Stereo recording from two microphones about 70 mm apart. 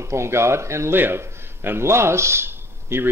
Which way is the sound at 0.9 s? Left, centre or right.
Right.